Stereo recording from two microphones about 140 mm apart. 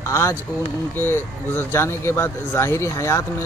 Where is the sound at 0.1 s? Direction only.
15° left (ahead or behind).